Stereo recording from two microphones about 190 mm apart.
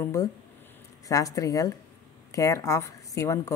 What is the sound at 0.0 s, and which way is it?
Speech, 15° left (ahead or behind).